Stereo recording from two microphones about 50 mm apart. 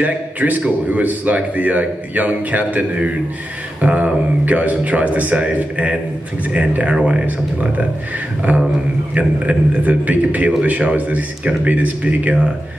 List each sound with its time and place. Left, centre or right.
0.0 s a man's voice: right